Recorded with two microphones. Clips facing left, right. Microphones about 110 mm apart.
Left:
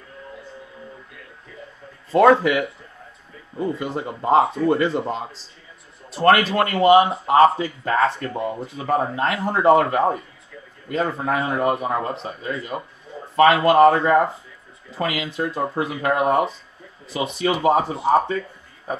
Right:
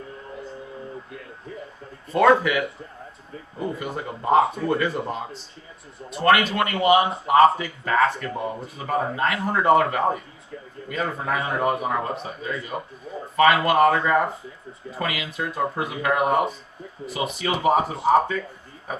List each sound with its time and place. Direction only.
2.1 s a man's voice: 30° left (ahead or behind)